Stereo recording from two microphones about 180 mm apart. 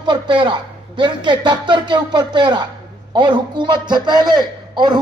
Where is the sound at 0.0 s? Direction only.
25° right (ahead or behind).